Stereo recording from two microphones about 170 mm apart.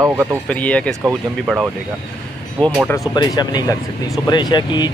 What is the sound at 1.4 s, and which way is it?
Speech, 5° right (ahead or behind).